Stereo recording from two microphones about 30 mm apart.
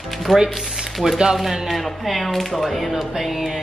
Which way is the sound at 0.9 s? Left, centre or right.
Centre.